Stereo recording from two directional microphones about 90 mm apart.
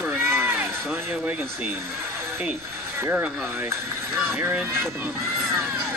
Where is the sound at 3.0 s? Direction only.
25° right (ahead or behind).